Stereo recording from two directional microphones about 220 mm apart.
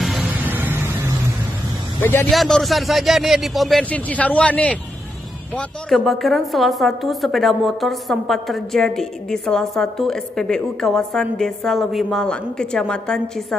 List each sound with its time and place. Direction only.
0.0 s vehicle: 5° right (ahead or behind)
2.0 s a woman's voice: 10° left (ahead or behind)